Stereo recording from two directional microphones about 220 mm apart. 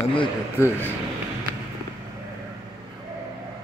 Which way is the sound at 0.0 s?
20° left (ahead or behind).